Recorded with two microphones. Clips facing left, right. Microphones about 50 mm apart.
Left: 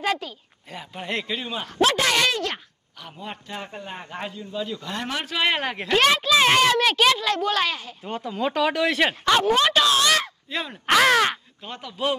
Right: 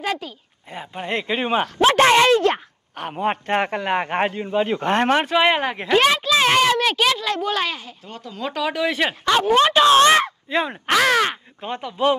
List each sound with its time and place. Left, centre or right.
0.0 s speech: centre
0.7 s speech: right
1.4 s a man's voice: right
2.0 s speech: right
3.0 s a man's voice: right
5.1 s speech: right
5.4 s a child's voice: centre
6.1 s a sound: centre
6.7 s a child's voice: centre
8.0 s speech: left; by 9.5 s centre
9.5 s speech: centre
9.8 s speech: right
10.9 s speech: centre
11.6 s speech: right